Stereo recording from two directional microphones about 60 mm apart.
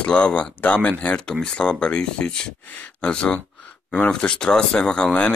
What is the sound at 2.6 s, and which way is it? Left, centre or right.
Speech, left.